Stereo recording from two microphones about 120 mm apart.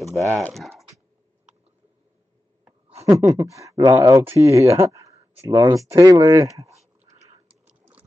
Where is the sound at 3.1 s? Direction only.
30° right (ahead or behind).